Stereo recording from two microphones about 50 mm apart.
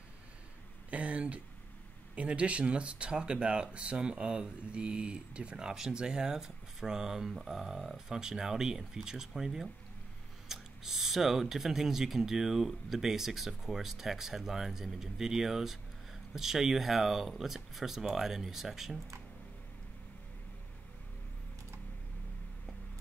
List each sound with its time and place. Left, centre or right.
0.8 s speech: right; by 18.9 s centre